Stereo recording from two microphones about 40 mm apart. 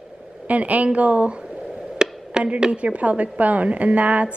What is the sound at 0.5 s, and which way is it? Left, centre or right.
Speech, right.